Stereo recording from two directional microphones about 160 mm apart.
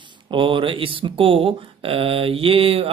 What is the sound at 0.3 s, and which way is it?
Speech, 30° right (ahead or behind).